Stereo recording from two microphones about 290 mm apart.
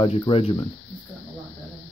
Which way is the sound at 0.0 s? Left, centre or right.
Centre.